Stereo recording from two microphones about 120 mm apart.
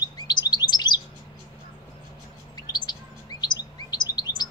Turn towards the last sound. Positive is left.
turn(degrees=35)  # may be behind; listen again after turning